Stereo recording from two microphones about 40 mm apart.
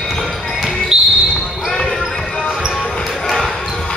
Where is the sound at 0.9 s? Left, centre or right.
Right.